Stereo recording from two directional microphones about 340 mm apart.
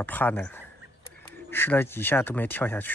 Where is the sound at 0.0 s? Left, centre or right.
Centre.